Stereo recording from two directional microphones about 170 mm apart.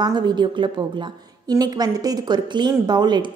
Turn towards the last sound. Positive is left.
turn(degrees=-25)  # may be behind; listen again after turning